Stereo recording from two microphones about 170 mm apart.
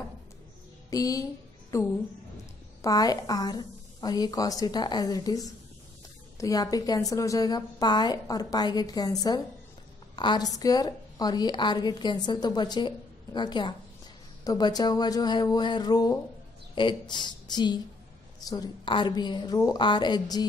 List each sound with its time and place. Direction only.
0.8 s a woman's voice: 20° left (ahead or behind)